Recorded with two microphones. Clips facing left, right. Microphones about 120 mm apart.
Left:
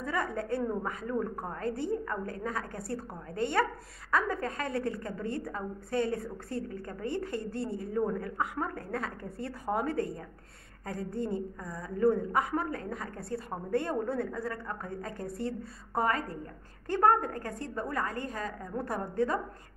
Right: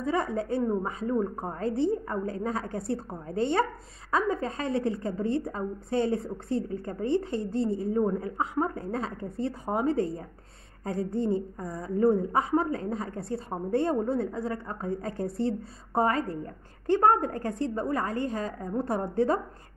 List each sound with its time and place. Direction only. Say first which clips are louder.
0.0 s a woman's voice: right 5 dB; 25° right (ahead or behind)